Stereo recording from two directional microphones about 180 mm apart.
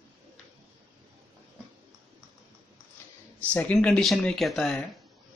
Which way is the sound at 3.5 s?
5° left (ahead or behind).